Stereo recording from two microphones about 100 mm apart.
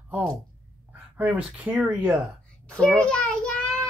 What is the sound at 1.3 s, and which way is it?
Speech, 10° right (ahead or behind).